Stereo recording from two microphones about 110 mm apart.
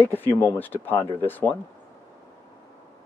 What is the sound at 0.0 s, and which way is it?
Speech, 20° left (ahead or behind).